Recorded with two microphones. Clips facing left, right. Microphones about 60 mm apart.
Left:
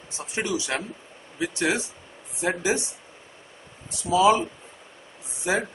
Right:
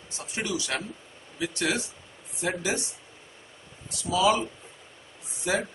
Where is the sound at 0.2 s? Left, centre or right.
Left.